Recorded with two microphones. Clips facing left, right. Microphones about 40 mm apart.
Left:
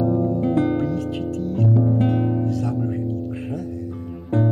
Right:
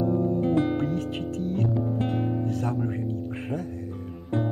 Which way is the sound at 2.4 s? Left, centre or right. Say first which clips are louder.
Left 4 dB; right.